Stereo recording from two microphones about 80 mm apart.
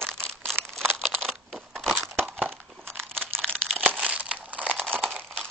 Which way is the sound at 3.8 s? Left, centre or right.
Centre.